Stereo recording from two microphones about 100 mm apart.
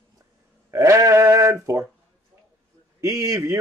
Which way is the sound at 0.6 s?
30° right (ahead or behind).